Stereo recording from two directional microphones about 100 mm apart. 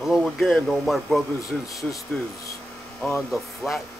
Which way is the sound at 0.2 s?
5° left (ahead or behind).